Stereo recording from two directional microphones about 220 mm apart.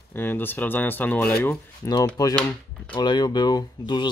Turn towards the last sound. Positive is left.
turn(degrees=20)  # may be behind; listen again after turning